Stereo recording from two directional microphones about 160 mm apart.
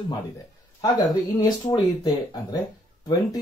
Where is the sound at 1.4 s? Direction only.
25° left (ahead or behind).